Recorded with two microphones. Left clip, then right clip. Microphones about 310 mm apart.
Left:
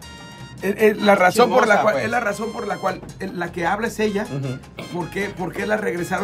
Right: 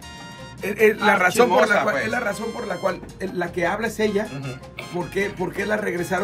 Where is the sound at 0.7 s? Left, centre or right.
Left.